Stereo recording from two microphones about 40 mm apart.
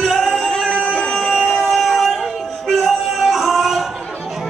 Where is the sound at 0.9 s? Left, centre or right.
Centre.